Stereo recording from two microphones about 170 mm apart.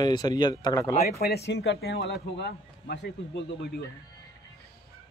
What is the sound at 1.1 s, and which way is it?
Speech, 70° left (ahead or behind).